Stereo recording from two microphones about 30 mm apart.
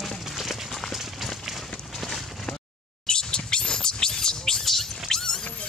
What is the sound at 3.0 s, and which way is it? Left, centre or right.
Scratch, left.